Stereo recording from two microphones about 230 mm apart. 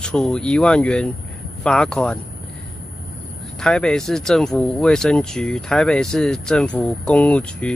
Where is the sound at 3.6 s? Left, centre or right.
Centre.